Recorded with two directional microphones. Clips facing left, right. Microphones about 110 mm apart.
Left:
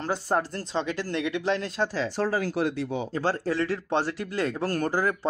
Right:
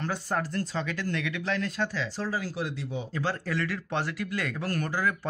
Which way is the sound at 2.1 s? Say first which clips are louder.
Left 6 dB; 55° left (ahead or behind).